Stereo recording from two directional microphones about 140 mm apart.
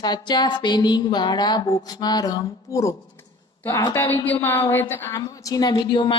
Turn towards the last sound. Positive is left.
turn(degrees=35)  # may be behind; listen again after turning